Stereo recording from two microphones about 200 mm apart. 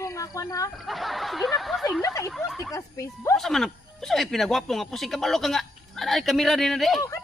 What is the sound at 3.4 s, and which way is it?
Speech, centre (ahead or behind).